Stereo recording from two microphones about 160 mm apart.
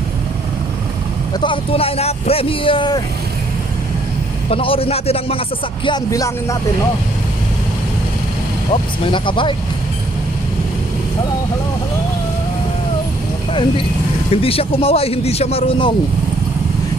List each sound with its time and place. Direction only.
1.4 s speech: 35° left (ahead or behind)
4.5 s speech: 35° left (ahead or behind)
5.9 s speech: 25° left (ahead or behind)
9.0 s speech: 30° left (ahead or behind)
13.5 s speech: 30° left (ahead or behind)